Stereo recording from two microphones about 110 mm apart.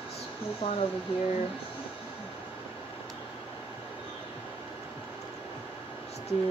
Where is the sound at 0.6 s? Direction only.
45° left (ahead or behind).